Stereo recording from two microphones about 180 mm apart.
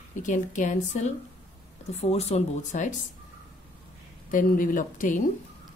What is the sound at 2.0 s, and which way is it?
Speech, 35° left (ahead or behind).